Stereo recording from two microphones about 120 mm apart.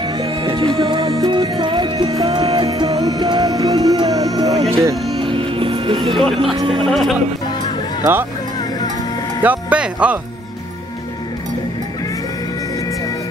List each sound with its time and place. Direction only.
0.0 s music: 45° right (ahead or behind)
2.4 s music: 45° right (ahead or behind)
2.8 s music: 30° right (ahead or behind)
4.6 s music: 50° right (ahead or behind)
5.9 s speech: centre (ahead or behind)
6.5 s speech: 45° right (ahead or behind)
6.9 s speech: centre (ahead or behind)
9.4 s speech: 10° right (ahead or behind)